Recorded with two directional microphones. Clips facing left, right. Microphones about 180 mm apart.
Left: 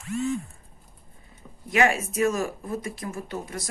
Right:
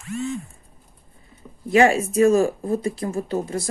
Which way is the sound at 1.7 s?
30° right (ahead or behind).